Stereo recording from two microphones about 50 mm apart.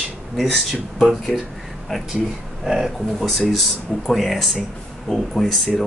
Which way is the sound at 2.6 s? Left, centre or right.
Centre.